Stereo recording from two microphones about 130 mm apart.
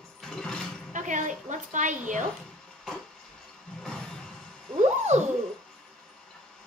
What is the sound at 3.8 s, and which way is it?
Music, 5° left (ahead or behind).